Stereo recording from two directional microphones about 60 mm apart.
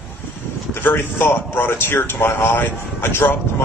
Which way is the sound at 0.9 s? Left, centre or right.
Left.